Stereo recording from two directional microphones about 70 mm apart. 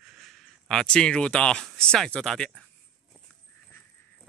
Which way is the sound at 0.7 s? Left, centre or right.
Centre.